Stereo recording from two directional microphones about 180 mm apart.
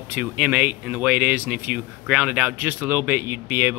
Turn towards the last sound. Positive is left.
turn(degrees=-10)  # may be behind; listen again after turning